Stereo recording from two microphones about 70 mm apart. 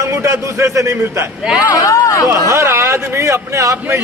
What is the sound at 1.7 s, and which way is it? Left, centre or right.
Speech, left.